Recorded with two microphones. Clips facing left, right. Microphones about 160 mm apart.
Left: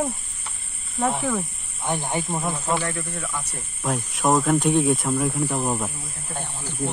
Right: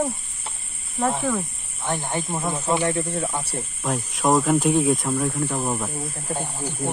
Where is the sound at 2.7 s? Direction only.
25° right (ahead or behind).